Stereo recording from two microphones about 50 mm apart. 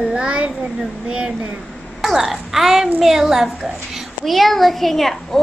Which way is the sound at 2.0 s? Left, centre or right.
Centre.